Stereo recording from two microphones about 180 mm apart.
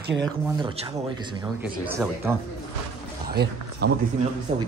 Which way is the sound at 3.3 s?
65° right (ahead or behind).